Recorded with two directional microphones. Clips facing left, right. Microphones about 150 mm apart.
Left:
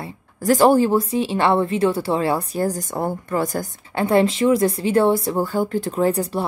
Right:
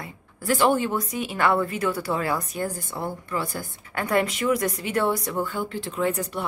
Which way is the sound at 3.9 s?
25° left (ahead or behind).